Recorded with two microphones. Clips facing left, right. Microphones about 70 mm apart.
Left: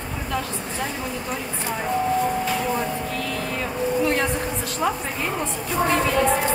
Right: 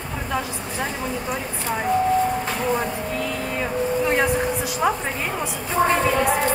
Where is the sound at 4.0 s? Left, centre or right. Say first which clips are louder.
Right 1 dB; centre.